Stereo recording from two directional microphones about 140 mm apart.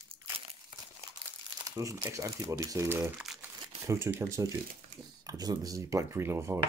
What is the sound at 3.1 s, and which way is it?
Crumpling, centre (ahead or behind).